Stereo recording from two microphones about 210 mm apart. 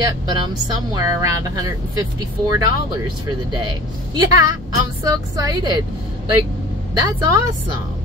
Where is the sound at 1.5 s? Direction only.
15° right (ahead or behind).